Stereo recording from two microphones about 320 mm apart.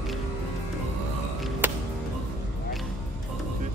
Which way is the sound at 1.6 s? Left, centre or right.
Centre.